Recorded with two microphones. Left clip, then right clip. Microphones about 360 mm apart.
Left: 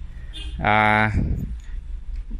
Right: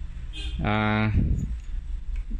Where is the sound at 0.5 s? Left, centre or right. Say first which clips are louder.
Left 9 dB; centre.